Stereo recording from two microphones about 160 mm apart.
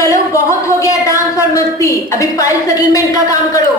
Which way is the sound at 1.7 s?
20° left (ahead or behind).